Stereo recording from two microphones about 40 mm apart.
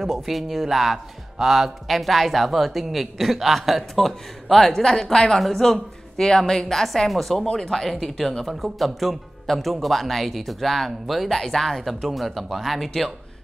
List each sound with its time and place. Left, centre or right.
0.0 s speech: centre